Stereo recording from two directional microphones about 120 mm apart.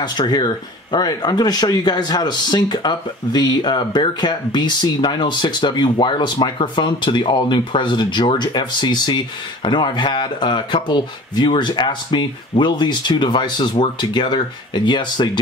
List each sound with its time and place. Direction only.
0.0 s speech: 35° left (ahead or behind)